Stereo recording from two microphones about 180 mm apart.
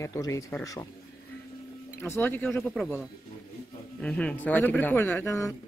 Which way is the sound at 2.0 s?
10° left (ahead or behind).